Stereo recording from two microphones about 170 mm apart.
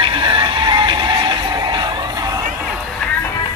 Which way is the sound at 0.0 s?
30° right (ahead or behind).